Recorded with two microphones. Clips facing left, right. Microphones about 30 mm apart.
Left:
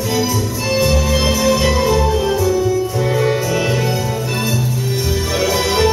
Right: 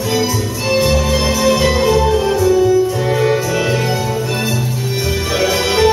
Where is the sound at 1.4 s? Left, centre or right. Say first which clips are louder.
Right 3 dB; centre.